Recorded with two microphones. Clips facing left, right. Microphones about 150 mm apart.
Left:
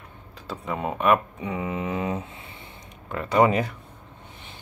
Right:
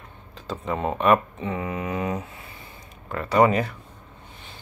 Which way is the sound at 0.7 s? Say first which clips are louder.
Right 2 dB; 10° left (ahead or behind).